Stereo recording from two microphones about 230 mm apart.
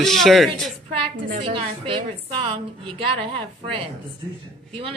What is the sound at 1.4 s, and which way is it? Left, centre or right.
Speech, right.